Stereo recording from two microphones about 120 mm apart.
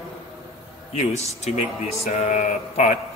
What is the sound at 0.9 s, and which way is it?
Speech, 65° left (ahead or behind).